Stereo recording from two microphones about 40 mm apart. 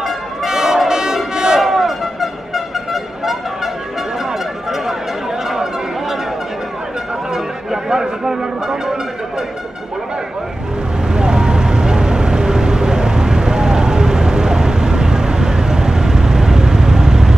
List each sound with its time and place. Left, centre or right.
0.0 s music: centre
1.6 s brass instrument: centre
4.2 s music: centre
5.5 s a sound: centre
7.3 s music: centre
11.1 s vehicle: centre